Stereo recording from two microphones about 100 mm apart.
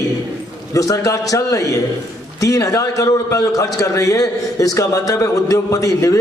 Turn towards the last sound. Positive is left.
turn(degrees=35)  # may be behind; listen again after turning